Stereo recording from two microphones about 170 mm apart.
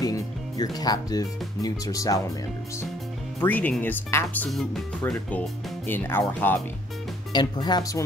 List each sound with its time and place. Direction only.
0.0 s speech: 20° left (ahead or behind)
3.3 s speech: 10° left (ahead or behind)
5.9 s speech: 15° left (ahead or behind)
7.3 s speech: 25° left (ahead or behind)